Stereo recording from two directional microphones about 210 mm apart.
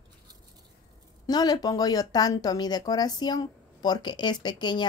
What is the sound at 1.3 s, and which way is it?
Speech, 20° left (ahead or behind).